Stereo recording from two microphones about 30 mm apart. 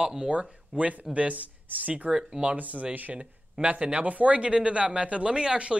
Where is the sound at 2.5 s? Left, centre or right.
Right.